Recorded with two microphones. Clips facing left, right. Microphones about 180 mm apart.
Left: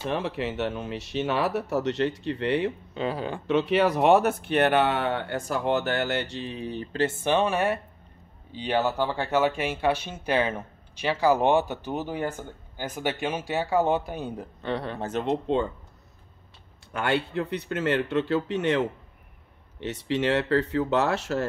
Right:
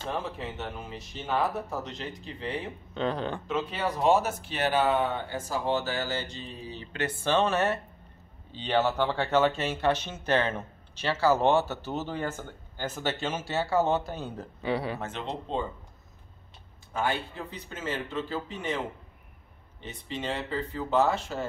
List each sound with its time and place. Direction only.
0.0 s speech: 75° left (ahead or behind)
2.9 s speech: 5° left (ahead or behind)
3.4 s speech: 75° left (ahead or behind)
6.9 s speech: 30° left (ahead or behind)
7.2 s speech: 10° left (ahead or behind)
14.6 s speech: 5° right (ahead or behind)
15.0 s speech: 40° left (ahead or behind)
15.2 s speech: 70° left (ahead or behind)
16.9 s speech: 70° left (ahead or behind)
19.8 s speech: 75° left (ahead or behind)